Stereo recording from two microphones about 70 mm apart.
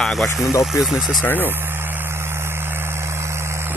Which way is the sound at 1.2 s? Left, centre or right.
Left.